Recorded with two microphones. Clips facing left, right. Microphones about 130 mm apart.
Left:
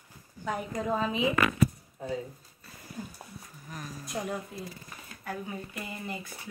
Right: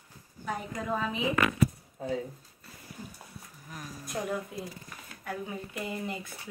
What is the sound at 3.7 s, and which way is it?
Speech, 5° right (ahead or behind).